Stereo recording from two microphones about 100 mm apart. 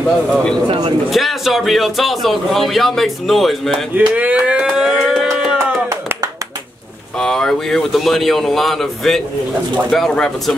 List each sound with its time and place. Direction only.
0.7 s speech: 50° right (ahead or behind)
1.1 s speech: centre (ahead or behind)
3.9 s a sound: 15° right (ahead or behind)
7.2 s speech: 5° left (ahead or behind)